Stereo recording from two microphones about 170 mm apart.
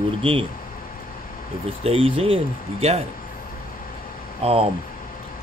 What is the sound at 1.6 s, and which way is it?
Speech, 35° right (ahead or behind).